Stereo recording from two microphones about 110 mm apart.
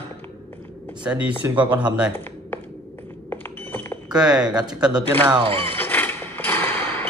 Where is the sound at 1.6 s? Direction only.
45° right (ahead or behind).